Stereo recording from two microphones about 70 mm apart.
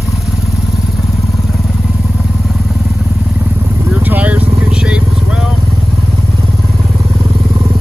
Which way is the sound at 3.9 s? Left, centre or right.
Right.